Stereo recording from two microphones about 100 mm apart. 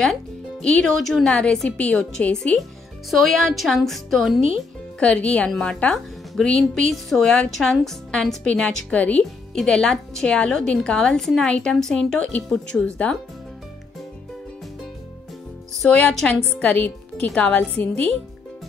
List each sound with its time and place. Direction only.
0.0 s a woman's voice: 5° left (ahead or behind)
3.1 s speech: centre (ahead or behind)
5.0 s a woman's voice: 10° left (ahead or behind)
15.7 s a woman's voice: 5° left (ahead or behind)